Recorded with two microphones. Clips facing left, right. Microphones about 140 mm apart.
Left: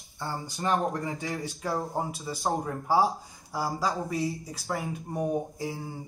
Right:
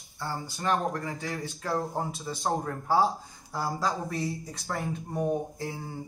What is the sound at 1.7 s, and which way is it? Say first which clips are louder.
Speech: even; 5° left (ahead or behind).